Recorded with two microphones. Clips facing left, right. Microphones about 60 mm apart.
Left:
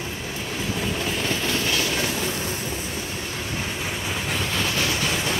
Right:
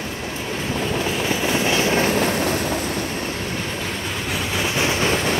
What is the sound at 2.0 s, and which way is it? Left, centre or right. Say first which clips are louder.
Train: right 7 dB; right.